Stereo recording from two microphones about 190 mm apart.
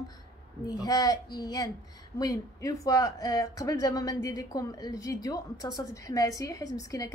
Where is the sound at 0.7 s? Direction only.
20° left (ahead or behind).